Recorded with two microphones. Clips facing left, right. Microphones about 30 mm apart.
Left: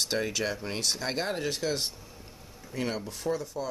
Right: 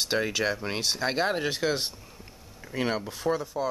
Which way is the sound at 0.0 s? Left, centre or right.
Centre.